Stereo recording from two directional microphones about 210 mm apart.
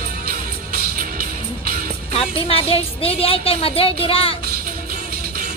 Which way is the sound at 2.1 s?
25° left (ahead or behind).